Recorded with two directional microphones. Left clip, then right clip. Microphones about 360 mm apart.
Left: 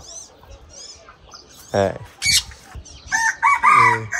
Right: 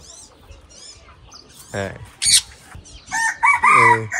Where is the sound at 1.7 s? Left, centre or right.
Centre.